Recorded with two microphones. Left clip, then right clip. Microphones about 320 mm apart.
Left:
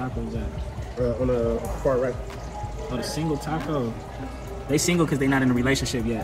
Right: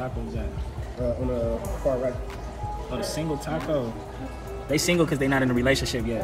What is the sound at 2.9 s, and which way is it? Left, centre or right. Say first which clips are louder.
Speech: left 1 dB; centre.